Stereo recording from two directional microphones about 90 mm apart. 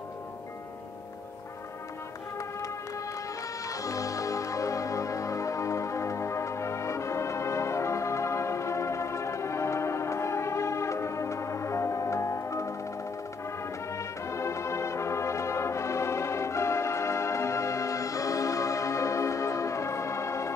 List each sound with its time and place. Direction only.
3.6 s music: 40° left (ahead or behind)
13.9 s brass instrument: 30° left (ahead or behind)